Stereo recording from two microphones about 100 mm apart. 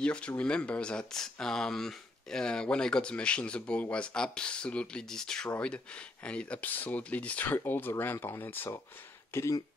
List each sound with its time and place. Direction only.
0.0 s speech: 10° left (ahead or behind); by 9.6 s 30° left (ahead or behind)